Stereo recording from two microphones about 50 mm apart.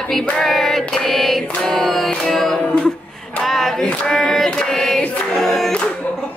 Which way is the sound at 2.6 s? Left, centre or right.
Left.